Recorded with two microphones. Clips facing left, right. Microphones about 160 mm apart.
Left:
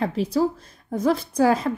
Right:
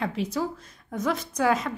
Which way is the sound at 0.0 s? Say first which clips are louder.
Left 6 dB; 35° left (ahead or behind).